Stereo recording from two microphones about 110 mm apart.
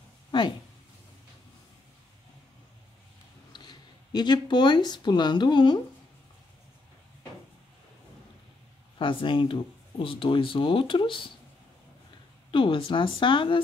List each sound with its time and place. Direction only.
0.3 s a sound: 45° left (ahead or behind)
3.5 s speech: 40° left (ahead or behind)
8.9 s speech: 50° left (ahead or behind)
12.4 s speech: 50° left (ahead or behind)